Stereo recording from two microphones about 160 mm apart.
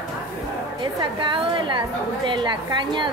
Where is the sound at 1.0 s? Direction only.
30° right (ahead or behind).